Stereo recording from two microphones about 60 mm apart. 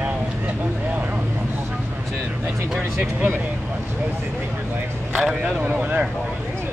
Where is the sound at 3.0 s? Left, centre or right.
Right.